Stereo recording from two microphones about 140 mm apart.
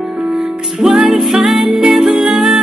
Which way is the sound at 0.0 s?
5° right (ahead or behind).